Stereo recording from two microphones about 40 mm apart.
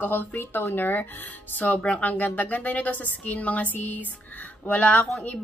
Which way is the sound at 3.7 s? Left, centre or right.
Left.